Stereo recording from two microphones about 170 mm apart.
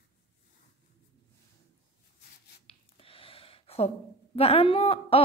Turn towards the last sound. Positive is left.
turn(degrees=35)  # may be behind; listen again after turning